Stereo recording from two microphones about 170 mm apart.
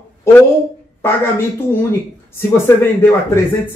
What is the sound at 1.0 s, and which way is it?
Speech, 15° left (ahead or behind).